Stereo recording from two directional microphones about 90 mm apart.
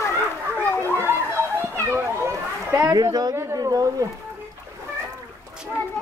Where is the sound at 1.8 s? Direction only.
30° right (ahead or behind).